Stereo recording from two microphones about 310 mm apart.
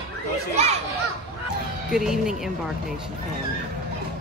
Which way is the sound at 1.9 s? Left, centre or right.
Centre.